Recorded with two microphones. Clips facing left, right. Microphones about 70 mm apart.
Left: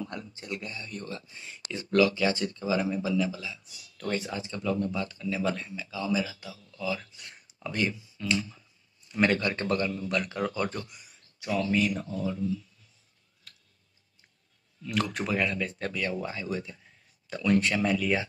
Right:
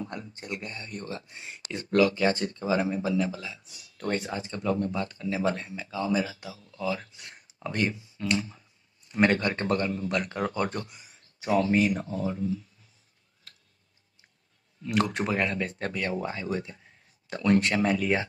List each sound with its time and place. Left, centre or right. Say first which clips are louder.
0.0 s speech: right 1 dB; right
14.8 s speech: right 3 dB; right